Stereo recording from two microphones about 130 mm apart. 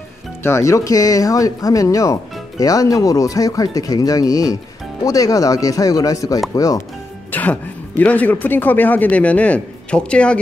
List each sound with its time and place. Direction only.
0.4 s speech: 20° left (ahead or behind)
7.2 s music: 15° left (ahead or behind)
8.0 s a man's voice: 10° left (ahead or behind)